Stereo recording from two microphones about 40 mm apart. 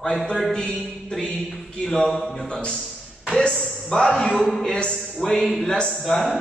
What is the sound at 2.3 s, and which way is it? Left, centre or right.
Speech, left.